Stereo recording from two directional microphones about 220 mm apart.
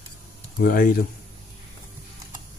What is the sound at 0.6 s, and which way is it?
Speech, 40° left (ahead or behind).